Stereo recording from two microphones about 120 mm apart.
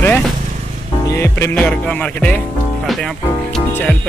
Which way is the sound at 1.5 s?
10° left (ahead or behind).